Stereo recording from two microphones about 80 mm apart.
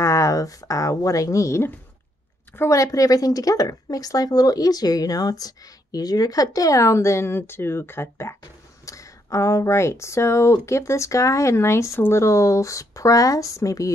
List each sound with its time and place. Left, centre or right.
0.0 s speech: left
2.7 s speech: left